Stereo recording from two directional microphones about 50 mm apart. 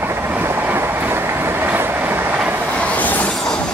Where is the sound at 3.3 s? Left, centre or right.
Centre.